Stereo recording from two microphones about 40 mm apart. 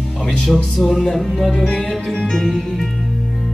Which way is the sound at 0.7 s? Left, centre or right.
Centre.